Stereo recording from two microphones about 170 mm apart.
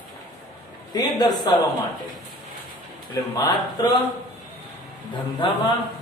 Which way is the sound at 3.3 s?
25° left (ahead or behind).